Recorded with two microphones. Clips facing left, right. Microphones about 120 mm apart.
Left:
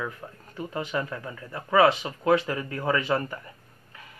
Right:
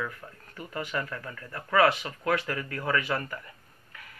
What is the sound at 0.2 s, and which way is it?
Speech, 25° left (ahead or behind).